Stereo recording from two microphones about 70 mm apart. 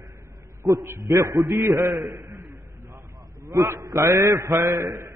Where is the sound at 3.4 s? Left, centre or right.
Right.